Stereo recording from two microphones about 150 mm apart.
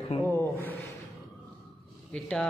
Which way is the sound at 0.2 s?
15° left (ahead or behind).